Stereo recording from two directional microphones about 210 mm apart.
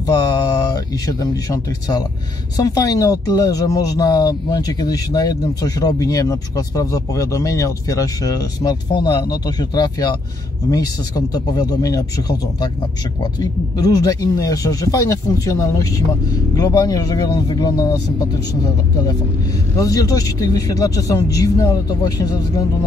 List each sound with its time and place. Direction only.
0.0 s speech: 20° left (ahead or behind)
19.8 s speech: 15° left (ahead or behind)